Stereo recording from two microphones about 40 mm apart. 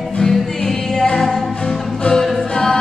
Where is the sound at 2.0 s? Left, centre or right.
Centre.